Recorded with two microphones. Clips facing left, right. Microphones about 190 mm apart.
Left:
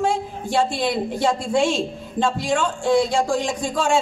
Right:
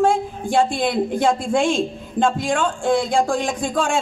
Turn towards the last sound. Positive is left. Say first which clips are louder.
# even
turn(degrees=-50)  # may be behind; listen again after turning